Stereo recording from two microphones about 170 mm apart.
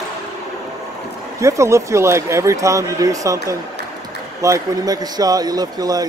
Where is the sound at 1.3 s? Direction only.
15° right (ahead or behind).